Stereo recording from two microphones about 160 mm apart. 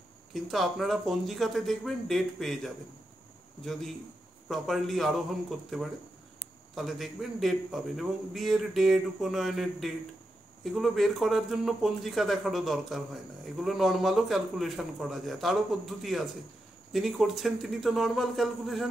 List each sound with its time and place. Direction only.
0.3 s speech: centre (ahead or behind)
4.5 s speech: centre (ahead or behind)